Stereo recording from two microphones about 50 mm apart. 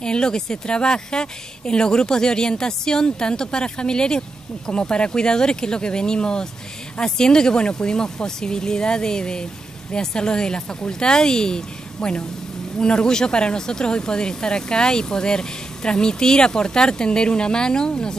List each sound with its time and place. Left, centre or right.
0.0 s speech: centre